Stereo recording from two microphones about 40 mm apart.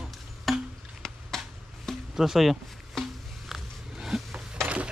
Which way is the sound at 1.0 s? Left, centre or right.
Centre.